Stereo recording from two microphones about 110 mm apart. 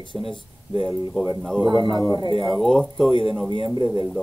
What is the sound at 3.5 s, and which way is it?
Speech, 40° right (ahead or behind).